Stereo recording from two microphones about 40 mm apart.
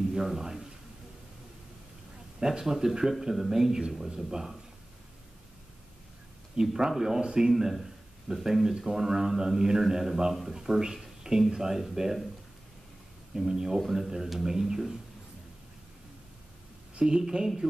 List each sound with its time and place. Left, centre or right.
0.1 s speech: centre
2.4 s speech: centre
6.5 s speech: centre
7.7 s speech: centre
13.3 s speech: centre
13.7 s speech: centre
17.0 s speech: centre